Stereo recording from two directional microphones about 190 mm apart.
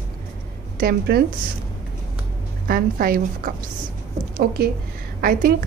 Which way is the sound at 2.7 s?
50° right (ahead or behind).